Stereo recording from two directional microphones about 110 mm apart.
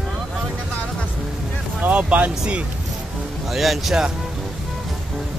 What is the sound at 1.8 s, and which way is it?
Speech, 10° right (ahead or behind).